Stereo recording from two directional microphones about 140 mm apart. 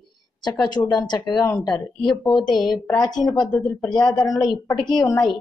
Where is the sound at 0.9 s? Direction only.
30° left (ahead or behind).